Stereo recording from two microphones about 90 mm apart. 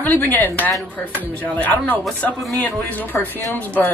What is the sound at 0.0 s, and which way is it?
A woman's voice, 20° left (ahead or behind).